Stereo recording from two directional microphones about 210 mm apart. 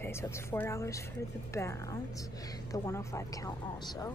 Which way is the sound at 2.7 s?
15° left (ahead or behind).